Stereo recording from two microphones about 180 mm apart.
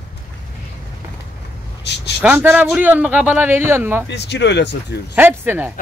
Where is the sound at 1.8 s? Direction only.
70° left (ahead or behind).